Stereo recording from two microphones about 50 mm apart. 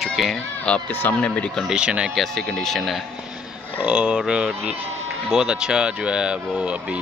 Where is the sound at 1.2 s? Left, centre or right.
Left.